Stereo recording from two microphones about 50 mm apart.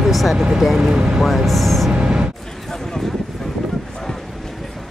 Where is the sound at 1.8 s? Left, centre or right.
Centre.